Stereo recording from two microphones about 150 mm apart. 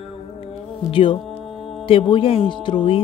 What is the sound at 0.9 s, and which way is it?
Music, 35° left (ahead or behind).